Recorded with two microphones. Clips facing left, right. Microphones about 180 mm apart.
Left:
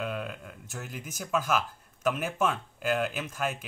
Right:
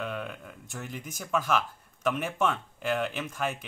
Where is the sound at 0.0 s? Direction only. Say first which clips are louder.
Left 1 dB; 5° left (ahead or behind).